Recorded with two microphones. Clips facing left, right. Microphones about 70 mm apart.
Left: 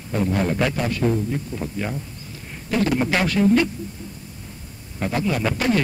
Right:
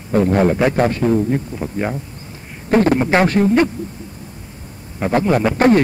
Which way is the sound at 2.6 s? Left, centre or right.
Right.